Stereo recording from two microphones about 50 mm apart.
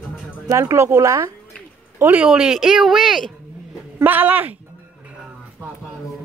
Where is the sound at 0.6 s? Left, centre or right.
Right.